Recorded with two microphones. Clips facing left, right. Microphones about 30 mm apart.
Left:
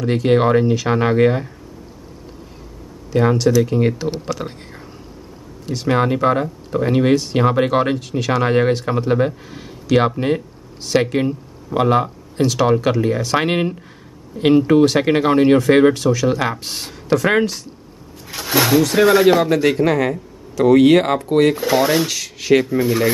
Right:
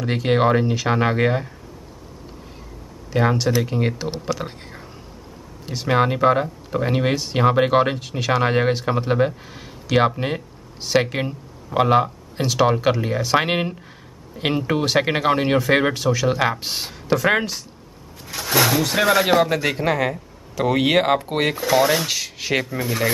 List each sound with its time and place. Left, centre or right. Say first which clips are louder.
0.0 s speech: left 3 dB; centre
3.1 s speech: left 4 dB; centre
5.7 s speech: left 2 dB; centre
14.3 s speech: left 7 dB; centre
14.7 s speech: left 6 dB; centre
21.5 s speech: left 2 dB; centre